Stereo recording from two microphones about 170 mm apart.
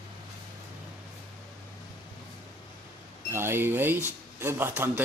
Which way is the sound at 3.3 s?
15° right (ahead or behind).